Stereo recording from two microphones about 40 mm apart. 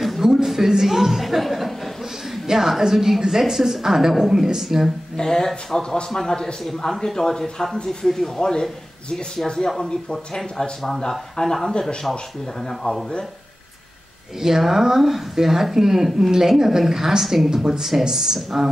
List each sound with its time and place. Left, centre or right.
0.2 s a woman's voice: centre
5.1 s speech: centre
14.4 s speech: centre